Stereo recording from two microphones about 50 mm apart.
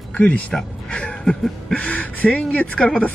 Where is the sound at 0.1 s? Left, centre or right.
Left.